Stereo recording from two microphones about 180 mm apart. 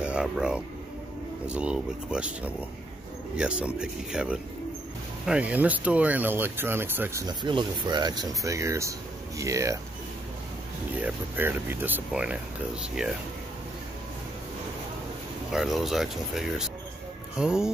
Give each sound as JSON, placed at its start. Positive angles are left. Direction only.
{"t": 0.0, "sound": "speech", "side_deg": -5}
{"t": 3.3, "sound": "speech", "side_deg": -5}
{"t": 7.2, "sound": "speech", "side_deg": -25}
{"t": 11.0, "sound": "speech", "side_deg": -10}
{"t": 15.5, "sound": "speech", "side_deg": 0}